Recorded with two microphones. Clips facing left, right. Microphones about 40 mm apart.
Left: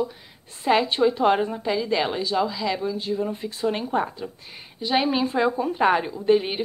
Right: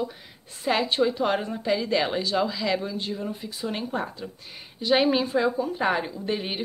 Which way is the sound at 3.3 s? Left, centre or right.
Left.